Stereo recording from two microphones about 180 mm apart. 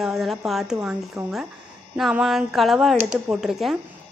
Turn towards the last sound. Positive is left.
turn(degrees=0)  # may be behind; listen again after turning